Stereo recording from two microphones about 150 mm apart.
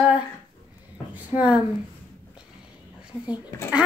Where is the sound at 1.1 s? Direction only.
10° right (ahead or behind).